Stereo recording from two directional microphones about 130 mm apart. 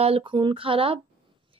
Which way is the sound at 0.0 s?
45° right (ahead or behind).